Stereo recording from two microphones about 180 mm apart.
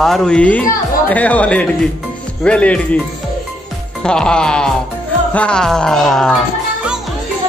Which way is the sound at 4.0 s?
5° left (ahead or behind).